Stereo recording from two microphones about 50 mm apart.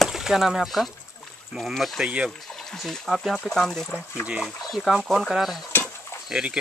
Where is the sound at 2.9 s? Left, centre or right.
Centre.